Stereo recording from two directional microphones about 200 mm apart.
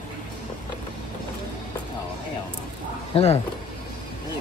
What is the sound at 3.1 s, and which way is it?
Speech, 30° left (ahead or behind).